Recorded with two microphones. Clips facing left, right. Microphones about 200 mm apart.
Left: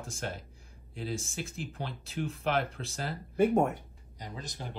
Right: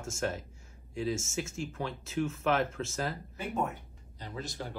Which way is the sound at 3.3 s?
50° left (ahead or behind).